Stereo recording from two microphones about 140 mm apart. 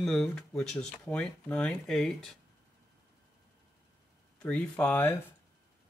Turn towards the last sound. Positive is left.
turn(degrees=15)  # may be behind; listen again after turning